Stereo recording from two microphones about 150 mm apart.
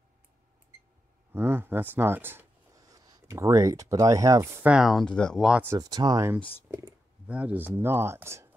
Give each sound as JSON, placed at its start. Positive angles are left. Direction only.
{"t": 1.3, "sound": "speech", "side_deg": -15}
{"t": 4.7, "sound": "speech", "side_deg": 0}
{"t": 5.5, "sound": "speech", "side_deg": -10}
{"t": 5.8, "sound": "speech", "side_deg": -25}
{"t": 7.2, "sound": "speech", "side_deg": -10}